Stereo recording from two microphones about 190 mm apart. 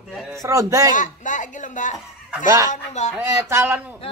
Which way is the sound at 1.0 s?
40° left (ahead or behind).